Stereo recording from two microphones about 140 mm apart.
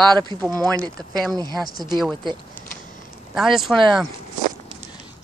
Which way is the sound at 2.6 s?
15° right (ahead or behind).